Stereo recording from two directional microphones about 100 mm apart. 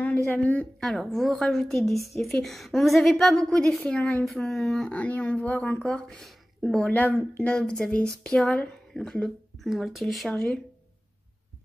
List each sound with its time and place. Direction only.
0.0 s speech: 15° left (ahead or behind)
0.7 s a woman's voice: 5° left (ahead or behind)
6.9 s speech: 15° left (ahead or behind)